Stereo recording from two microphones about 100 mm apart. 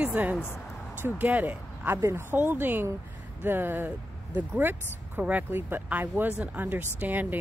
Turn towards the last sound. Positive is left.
turn(degrees=-15)  # may be behind; listen again after turning